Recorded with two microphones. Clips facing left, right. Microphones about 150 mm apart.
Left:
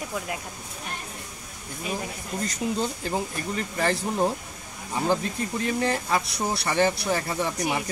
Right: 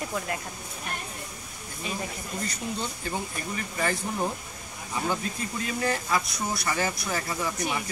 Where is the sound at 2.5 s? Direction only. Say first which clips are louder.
Left 9 dB; 35° left (ahead or behind).